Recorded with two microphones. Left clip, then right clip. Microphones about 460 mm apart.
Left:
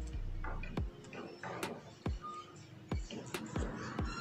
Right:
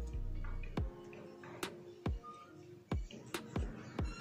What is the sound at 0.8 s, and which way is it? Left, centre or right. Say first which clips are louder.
Music: right 3 dB; centre.